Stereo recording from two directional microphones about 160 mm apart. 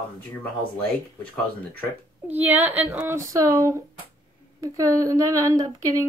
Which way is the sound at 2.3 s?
10° right (ahead or behind).